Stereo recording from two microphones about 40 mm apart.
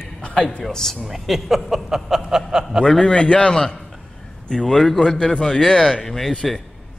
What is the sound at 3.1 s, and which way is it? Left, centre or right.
A man's voice, left.